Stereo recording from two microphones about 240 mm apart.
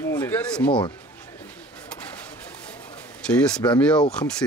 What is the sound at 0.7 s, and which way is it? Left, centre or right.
Speech, centre.